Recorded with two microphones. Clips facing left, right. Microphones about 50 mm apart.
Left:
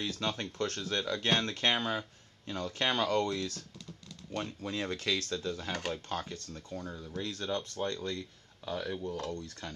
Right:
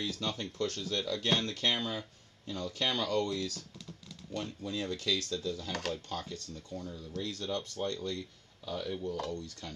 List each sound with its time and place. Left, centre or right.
0.0 s speech: left
0.7 s speech: left
8.6 s speech: left